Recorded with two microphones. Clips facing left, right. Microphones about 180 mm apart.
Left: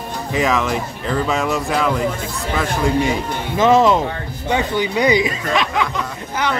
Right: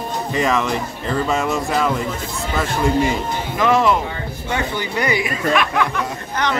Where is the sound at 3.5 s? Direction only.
25° left (ahead or behind).